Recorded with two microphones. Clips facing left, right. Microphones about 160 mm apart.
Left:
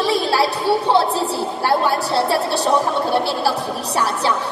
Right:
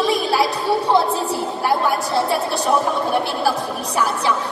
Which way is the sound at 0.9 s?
30° left (ahead or behind).